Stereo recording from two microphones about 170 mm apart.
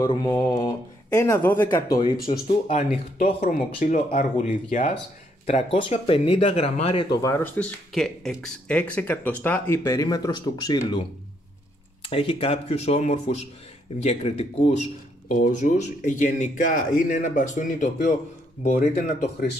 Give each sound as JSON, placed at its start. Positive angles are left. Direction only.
{"t": 0.0, "sound": "speech", "side_deg": 20}
{"t": 1.7, "sound": "speech", "side_deg": 25}
{"t": 2.1, "sound": "speech", "side_deg": 60}
{"t": 2.4, "sound": "speech", "side_deg": 35}
{"t": 3.3, "sound": "speech", "side_deg": 55}
{"t": 5.9, "sound": "speech", "side_deg": 30}
{"t": 7.2, "sound": "speech", "side_deg": 15}
{"t": 7.9, "sound": "speech", "side_deg": 0}